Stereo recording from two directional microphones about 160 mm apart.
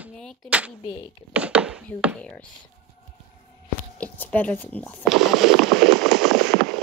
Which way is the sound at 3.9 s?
10° left (ahead or behind).